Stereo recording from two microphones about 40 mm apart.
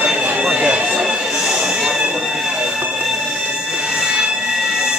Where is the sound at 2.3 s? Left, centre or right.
Centre.